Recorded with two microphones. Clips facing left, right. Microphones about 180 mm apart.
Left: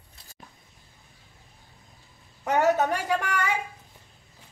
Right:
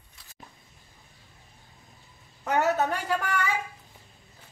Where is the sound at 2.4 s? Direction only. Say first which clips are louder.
Left 2 dB; 10° left (ahead or behind).